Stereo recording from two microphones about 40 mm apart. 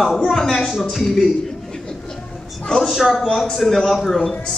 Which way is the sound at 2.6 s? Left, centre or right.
Centre.